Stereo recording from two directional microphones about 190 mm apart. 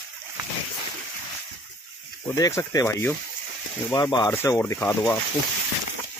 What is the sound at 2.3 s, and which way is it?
Speech, 20° left (ahead or behind).